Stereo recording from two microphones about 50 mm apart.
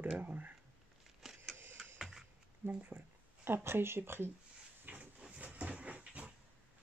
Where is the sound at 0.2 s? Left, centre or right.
Right.